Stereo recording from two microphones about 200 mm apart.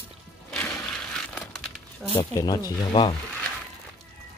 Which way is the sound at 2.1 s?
20° left (ahead or behind).